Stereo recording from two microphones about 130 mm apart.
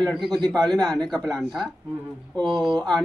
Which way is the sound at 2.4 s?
35° right (ahead or behind).